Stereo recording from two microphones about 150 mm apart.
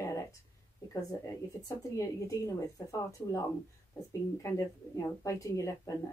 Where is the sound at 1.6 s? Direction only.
20° left (ahead or behind).